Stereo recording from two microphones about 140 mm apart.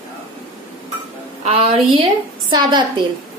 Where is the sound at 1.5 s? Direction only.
40° right (ahead or behind).